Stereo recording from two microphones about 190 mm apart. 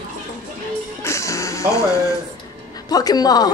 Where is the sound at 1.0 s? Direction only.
15° left (ahead or behind).